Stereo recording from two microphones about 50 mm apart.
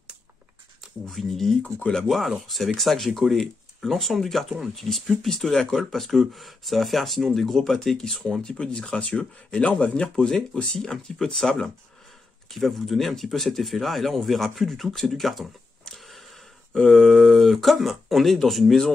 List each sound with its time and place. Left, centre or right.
1.0 s speech: centre
12.5 s speech: centre